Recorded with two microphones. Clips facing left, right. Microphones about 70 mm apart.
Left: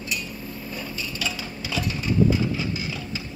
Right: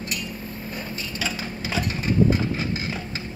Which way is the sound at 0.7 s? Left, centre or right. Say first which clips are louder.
Right 1 dB; right.